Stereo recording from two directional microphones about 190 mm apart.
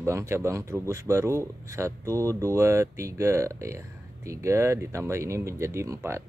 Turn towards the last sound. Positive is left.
turn(degrees=-15)  # may be behind; listen again after turning